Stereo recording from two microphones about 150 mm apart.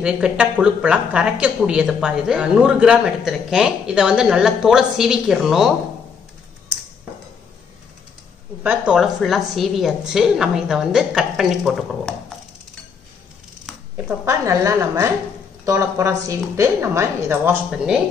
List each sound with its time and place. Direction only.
0.0 s a woman's voice: 5° right (ahead or behind)
8.6 s a woman's voice: 5° right (ahead or behind)
13.9 s a woman's voice: 10° right (ahead or behind)
14.4 s a woman's voice: 20° right (ahead or behind)